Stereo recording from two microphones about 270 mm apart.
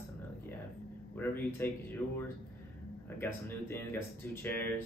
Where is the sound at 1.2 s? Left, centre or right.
Centre.